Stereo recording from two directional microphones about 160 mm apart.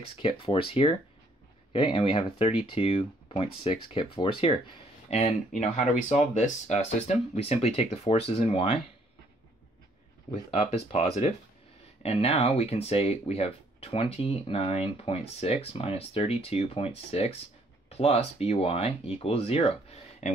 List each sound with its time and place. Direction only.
0.2 s speech: 35° left (ahead or behind)
5.6 s speech: 45° left (ahead or behind)
10.6 s speech: 40° left (ahead or behind)